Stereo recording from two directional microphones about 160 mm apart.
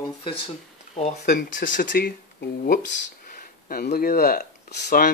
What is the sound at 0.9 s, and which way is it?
Speech, 45° left (ahead or behind).